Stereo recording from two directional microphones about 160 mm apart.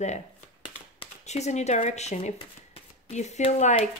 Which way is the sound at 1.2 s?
45° left (ahead or behind).